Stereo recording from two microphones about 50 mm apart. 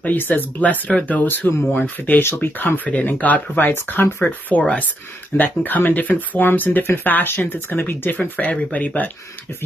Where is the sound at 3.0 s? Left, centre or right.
Left.